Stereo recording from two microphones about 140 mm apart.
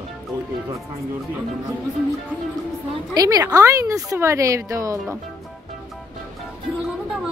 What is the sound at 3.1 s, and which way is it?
Speech, 25° right (ahead or behind).